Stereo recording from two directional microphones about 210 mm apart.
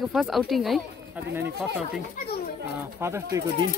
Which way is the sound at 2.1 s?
40° left (ahead or behind).